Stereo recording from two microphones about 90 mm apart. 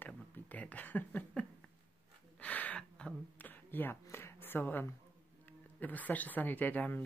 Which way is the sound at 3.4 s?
20° left (ahead or behind).